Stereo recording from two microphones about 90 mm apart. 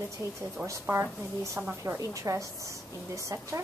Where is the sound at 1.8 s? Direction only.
35° right (ahead or behind).